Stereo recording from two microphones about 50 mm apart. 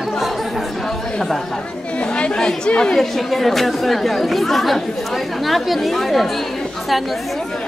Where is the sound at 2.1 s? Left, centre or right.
Centre.